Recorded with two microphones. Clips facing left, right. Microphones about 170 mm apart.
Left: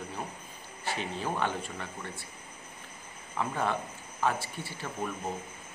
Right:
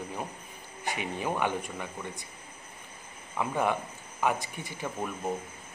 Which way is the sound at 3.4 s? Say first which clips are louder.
Right 2 dB; 15° right (ahead or behind).